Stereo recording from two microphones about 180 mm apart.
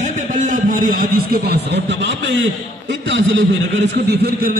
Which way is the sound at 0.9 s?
55° right (ahead or behind).